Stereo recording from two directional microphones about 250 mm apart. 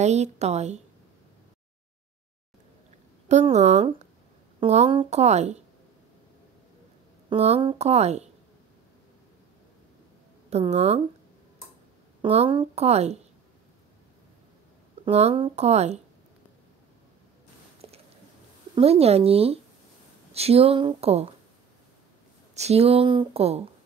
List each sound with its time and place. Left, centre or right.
0.0 s speech: right
3.3 s speech: right
7.2 s speech: right
10.5 s speech: right
12.2 s speech: right
15.0 s speech: right
17.8 s a sound: centre
18.8 s speech: right
22.6 s speech: right